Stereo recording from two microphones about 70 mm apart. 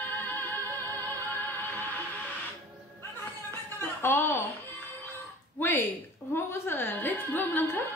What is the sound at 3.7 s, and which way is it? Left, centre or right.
Music, left.